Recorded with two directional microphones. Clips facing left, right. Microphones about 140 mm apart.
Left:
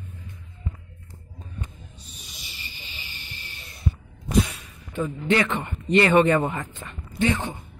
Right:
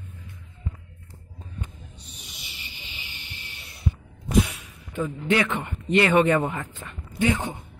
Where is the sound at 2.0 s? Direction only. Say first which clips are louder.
Even; 65° right (ahead or behind).